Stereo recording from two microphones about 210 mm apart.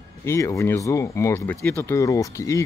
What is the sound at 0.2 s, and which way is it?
Speech, 15° left (ahead or behind).